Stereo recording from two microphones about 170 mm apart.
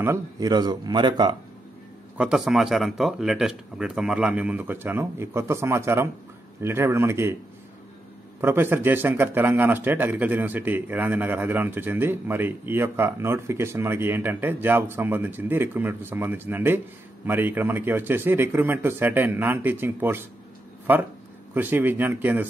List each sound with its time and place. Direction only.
0.0 s speech: 20° right (ahead or behind)
2.1 s a man's voice: 5° right (ahead or behind)
8.4 s a man's voice: 10° right (ahead or behind)
21.5 s a man's voice: 10° right (ahead or behind)